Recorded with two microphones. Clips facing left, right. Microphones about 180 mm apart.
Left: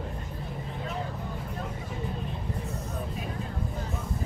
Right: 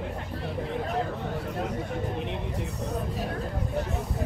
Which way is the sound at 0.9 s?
75° right (ahead or behind).